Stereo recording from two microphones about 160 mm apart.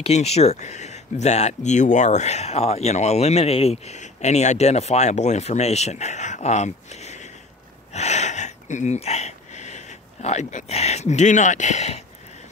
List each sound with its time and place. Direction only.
0.0 s speech: 40° left (ahead or behind)